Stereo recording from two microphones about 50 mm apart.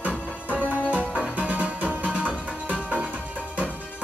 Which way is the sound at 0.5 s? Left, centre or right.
Right.